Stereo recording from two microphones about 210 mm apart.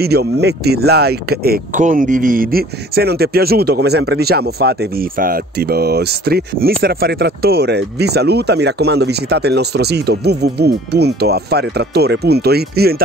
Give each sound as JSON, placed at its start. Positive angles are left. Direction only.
{"t": 0.0, "sound": "speech", "side_deg": -50}